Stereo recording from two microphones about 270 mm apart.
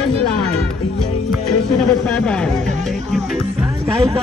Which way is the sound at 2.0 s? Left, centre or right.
Centre.